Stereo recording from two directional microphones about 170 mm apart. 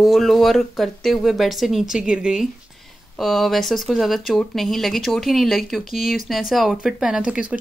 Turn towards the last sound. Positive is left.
turn(degrees=-5)  # may be behind; listen again after turning